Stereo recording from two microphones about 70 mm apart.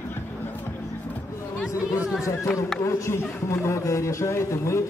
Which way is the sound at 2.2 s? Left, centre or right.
Left.